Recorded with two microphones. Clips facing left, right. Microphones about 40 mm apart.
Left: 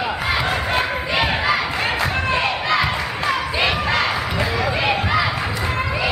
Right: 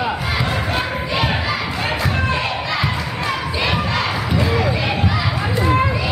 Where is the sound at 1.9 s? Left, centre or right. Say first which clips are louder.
Right 2 dB; centre.